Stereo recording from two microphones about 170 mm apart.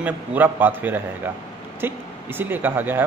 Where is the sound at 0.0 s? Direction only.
10° right (ahead or behind).